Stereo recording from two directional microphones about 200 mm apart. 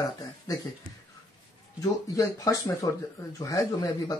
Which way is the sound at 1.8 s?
15° left (ahead or behind).